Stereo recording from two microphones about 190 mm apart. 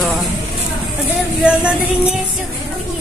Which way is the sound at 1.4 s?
5° right (ahead or behind).